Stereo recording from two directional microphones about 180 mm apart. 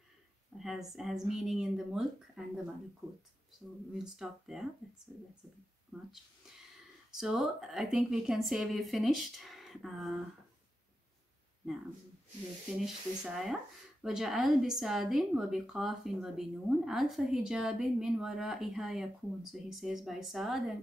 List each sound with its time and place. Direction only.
0.6 s a woman's voice: centre (ahead or behind)
3.9 s a woman's voice: centre (ahead or behind)
7.2 s a woman's voice: centre (ahead or behind)
12.8 s a woman's voice: centre (ahead or behind)